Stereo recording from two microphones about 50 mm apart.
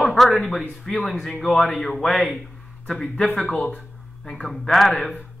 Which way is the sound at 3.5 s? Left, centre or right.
Left.